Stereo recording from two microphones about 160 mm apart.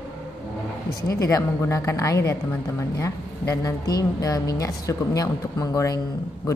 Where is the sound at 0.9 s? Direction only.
20° left (ahead or behind).